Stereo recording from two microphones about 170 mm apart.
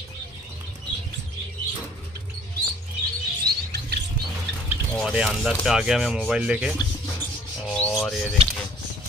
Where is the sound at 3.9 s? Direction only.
75° right (ahead or behind).